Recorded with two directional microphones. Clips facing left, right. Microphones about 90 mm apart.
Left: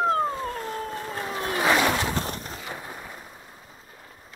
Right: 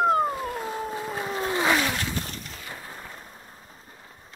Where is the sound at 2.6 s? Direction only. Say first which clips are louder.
Left 3 dB; 20° left (ahead or behind); by 4.3 s centre (ahead or behind).